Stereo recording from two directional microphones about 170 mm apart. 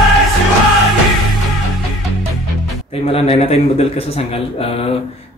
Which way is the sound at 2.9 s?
35° left (ahead or behind).